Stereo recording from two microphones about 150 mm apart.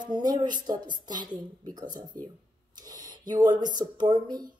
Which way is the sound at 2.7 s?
25° right (ahead or behind).